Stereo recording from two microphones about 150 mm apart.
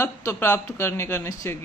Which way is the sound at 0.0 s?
20° left (ahead or behind).